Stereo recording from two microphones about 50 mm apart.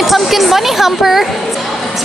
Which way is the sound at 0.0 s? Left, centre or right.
Centre.